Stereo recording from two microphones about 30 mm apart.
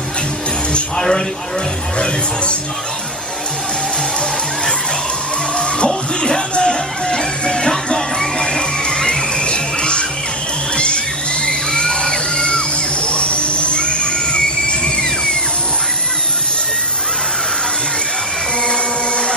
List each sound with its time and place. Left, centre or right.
5.9 s music: centre
8.4 s music: left
11.4 s music: left
18.7 s music: left